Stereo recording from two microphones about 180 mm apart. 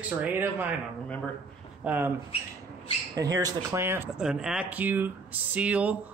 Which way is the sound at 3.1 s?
20° right (ahead or behind).